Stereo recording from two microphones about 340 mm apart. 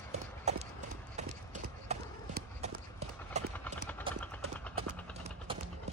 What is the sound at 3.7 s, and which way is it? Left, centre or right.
Clip-clop, centre.